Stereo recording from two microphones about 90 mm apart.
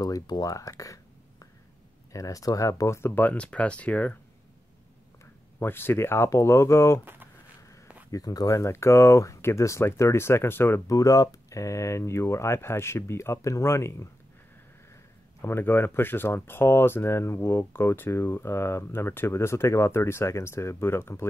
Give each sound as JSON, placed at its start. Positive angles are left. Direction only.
{"t": 0.0, "sound": "speech", "side_deg": 45}
{"t": 5.6, "sound": "speech", "side_deg": 25}
{"t": 8.1, "sound": "speech", "side_deg": 45}
{"t": 8.5, "sound": "speech", "side_deg": 30}
{"t": 10.9, "sound": "speech", "side_deg": 35}
{"t": 15.4, "sound": "speech", "side_deg": 25}